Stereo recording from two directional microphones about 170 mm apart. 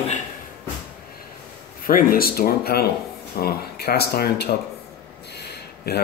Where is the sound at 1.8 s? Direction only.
55° left (ahead or behind).